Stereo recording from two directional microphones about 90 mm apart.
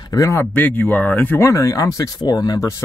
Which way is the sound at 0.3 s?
20° left (ahead or behind).